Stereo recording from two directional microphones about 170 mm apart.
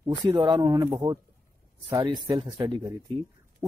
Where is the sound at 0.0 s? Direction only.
25° right (ahead or behind).